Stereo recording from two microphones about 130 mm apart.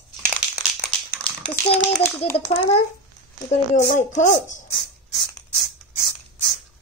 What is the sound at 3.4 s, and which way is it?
Speech, 65° left (ahead or behind).